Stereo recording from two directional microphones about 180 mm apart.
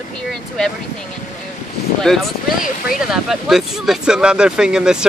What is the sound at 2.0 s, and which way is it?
Speech, centre (ahead or behind).